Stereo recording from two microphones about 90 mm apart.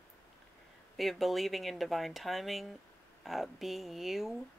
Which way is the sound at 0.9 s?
Centre (ahead or behind).